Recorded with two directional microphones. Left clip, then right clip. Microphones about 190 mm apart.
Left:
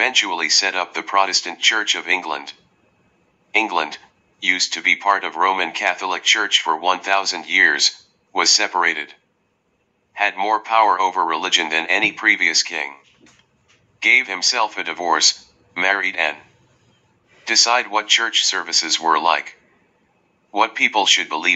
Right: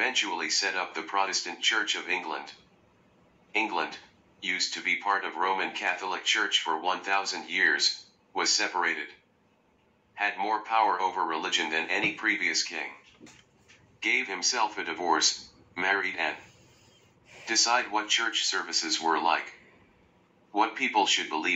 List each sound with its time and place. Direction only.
0.0 s speech: 25° left (ahead or behind)
1.7 s speech: 20° left (ahead or behind)
3.5 s speech: 25° left (ahead or behind)
10.1 s speech: 25° left (ahead or behind)
13.9 s speech: 25° left (ahead or behind)
15.1 s speech: centre (ahead or behind)
15.7 s speech: 25° left (ahead or behind)
17.6 s speech: 20° left (ahead or behind)
20.5 s speech: 25° left (ahead or behind)